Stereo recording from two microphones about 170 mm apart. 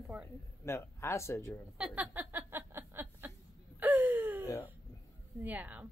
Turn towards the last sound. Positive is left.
turn(degrees=-10)  # may be behind; listen again after turning